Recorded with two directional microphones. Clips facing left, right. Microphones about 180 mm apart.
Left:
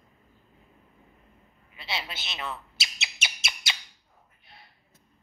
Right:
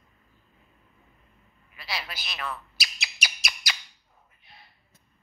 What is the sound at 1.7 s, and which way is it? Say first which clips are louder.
Bird: left 1 dB; 25° left (ahead or behind).